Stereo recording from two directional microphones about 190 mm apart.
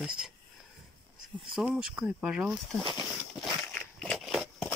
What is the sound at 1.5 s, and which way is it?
Speech, 5° right (ahead or behind).